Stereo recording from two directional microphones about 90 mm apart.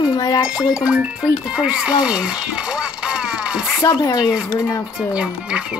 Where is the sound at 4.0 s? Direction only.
45° left (ahead or behind).